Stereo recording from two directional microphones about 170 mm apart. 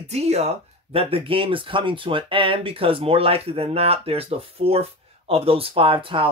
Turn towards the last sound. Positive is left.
turn(degrees=-30)  # may be behind; listen again after turning